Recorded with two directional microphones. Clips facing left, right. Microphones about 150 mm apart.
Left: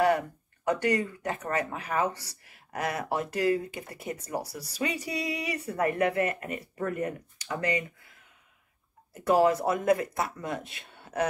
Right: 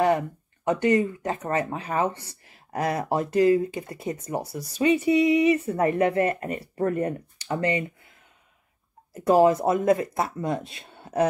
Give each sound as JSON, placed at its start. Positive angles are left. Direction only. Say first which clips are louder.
{"t": 0.7, "sound": "speech", "louder": "right 5 dB", "side_deg": -25}
{"t": 9.1, "sound": "speech", "louder": "right 4 dB", "side_deg": -30}